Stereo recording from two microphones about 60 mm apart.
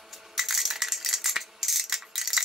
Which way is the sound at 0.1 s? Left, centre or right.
Centre.